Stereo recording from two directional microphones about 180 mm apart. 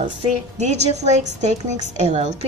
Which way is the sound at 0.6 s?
40° right (ahead or behind).